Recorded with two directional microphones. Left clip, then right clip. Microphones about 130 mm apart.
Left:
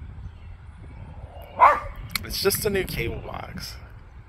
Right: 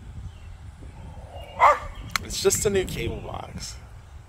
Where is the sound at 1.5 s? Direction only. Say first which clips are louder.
Left 1 dB; 10° right (ahead or behind).